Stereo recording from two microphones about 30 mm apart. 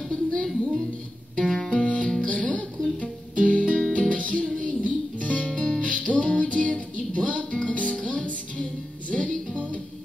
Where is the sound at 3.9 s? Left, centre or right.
Left.